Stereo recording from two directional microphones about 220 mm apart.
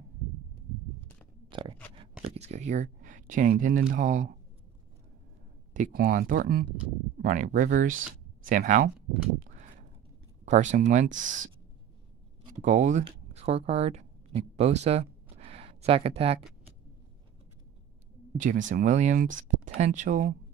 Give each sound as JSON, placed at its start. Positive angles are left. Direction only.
{"t": 1.5, "sound": "chewing", "side_deg": -25}
{"t": 2.2, "sound": "speech", "side_deg": -30}
{"t": 5.7, "sound": "speech", "side_deg": -35}
{"t": 10.4, "sound": "speech", "side_deg": -30}
{"t": 18.4, "sound": "speech", "side_deg": -35}